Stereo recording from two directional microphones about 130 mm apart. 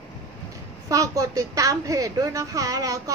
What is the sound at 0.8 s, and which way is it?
A woman's voice, 25° right (ahead or behind).